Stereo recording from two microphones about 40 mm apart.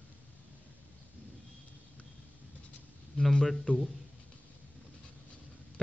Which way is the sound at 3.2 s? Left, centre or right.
Centre.